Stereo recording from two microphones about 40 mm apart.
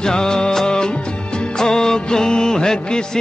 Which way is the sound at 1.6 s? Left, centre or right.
Centre.